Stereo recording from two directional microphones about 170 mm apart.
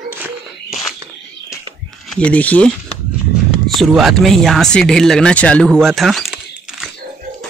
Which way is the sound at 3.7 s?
Centre (ahead or behind).